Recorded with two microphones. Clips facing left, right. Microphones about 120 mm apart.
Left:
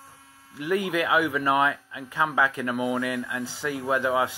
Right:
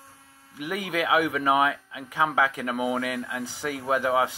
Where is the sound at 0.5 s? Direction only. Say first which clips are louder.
Left 4 dB; 15° right (ahead or behind).